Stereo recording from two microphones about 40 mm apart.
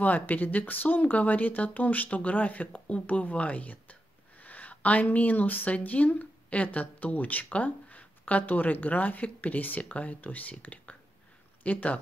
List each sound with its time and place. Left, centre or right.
0.0 s speech: left
9.8 s speech: left